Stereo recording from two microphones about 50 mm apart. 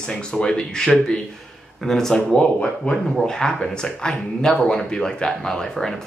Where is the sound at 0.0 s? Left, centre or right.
Centre.